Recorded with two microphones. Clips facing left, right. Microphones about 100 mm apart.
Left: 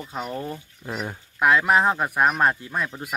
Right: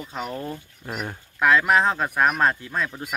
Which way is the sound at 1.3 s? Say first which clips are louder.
Even; 15° left (ahead or behind).